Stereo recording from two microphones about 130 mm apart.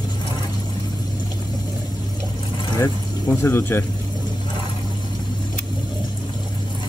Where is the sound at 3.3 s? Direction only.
20° left (ahead or behind).